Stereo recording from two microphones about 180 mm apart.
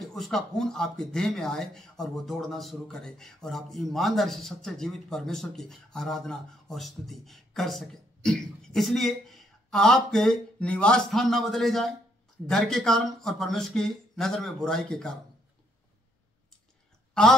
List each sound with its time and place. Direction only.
0.0 s speech: centre (ahead or behind)
17.1 s speech: centre (ahead or behind)